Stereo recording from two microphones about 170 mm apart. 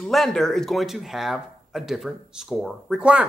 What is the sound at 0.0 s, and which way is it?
A man's voice, centre (ahead or behind).